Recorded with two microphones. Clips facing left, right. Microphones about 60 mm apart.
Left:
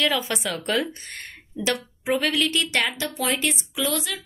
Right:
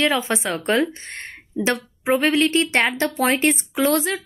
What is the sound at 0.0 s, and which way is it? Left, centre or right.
Speech, right.